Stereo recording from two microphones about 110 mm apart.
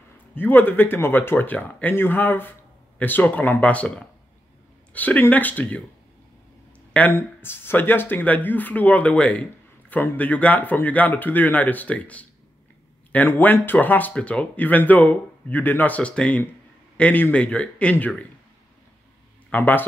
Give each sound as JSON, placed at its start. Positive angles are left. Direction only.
{"t": 0.3, "sound": "speech", "side_deg": 15}
{"t": 6.9, "sound": "a sound", "side_deg": 15}
{"t": 7.2, "sound": "speech", "side_deg": 20}
{"t": 19.5, "sound": "speech", "side_deg": 15}